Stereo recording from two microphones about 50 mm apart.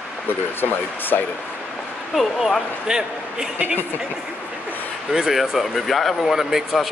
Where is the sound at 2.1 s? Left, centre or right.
Centre.